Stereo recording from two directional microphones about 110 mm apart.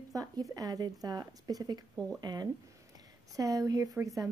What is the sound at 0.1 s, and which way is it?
Speech, 35° right (ahead or behind).